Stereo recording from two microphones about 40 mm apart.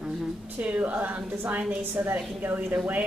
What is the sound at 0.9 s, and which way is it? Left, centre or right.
Speech, right.